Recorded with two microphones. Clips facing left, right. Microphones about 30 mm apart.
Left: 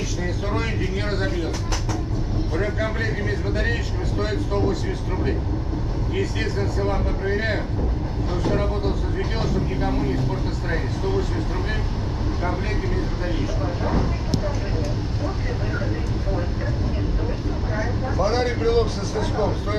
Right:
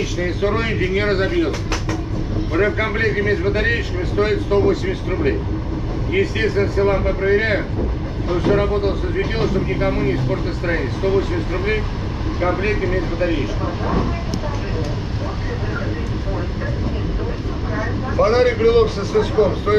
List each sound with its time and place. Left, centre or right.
0.2 s speech: right
18.1 s speech: right